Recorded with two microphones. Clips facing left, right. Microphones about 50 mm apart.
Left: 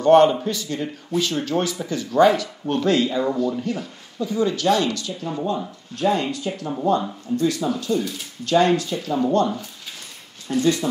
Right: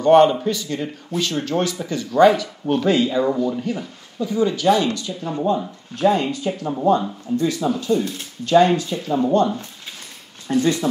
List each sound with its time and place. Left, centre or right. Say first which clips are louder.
0.0 s a man's voice: right 1 dB; centre
10.5 s speech: right 1 dB; right